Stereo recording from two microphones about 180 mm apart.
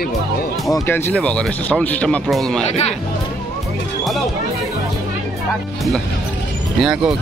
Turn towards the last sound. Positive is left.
turn(degrees=-5)  # may be behind; listen again after turning